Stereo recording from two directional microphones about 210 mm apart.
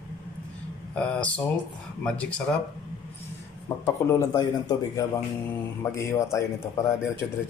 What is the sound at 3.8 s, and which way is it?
A man's voice, 15° left (ahead or behind).